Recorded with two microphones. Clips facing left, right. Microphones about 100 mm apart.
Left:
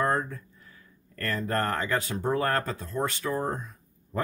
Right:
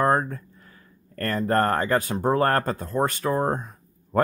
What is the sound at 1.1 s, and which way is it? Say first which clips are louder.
Speech: right 6 dB; 45° right (ahead or behind).